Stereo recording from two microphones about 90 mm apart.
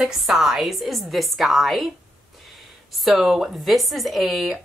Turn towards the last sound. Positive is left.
turn(degrees=0)  # may be behind; listen again after turning